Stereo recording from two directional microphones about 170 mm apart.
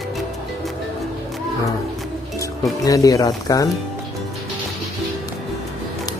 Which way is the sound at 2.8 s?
20° left (ahead or behind).